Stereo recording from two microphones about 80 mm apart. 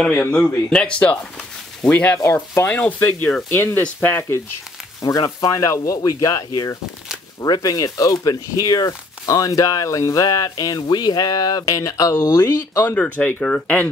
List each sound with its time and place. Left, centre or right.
0.0 s speech: centre
2.2 s speech: left
2.6 s speech: left
5.0 s speech: left
12.1 s speech: left
13.4 s speech: centre